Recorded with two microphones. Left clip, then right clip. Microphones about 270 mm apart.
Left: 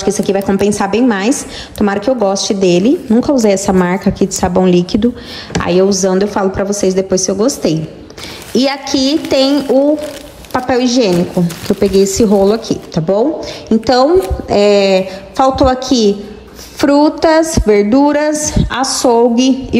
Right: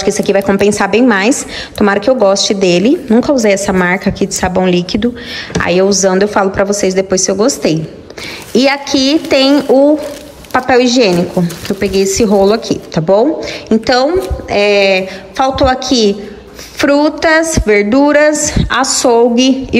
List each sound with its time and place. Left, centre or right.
0.0 s a woman's voice: centre